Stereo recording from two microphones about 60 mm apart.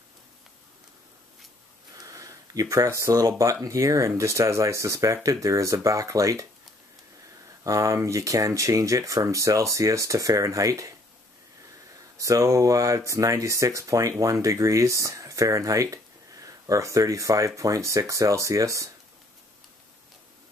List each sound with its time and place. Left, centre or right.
2.0 s a sound: right
2.9 s speech: right
7.6 s speech: right
12.2 s speech: right